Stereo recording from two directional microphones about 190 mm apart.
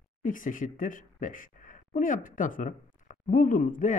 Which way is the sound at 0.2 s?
45° left (ahead or behind).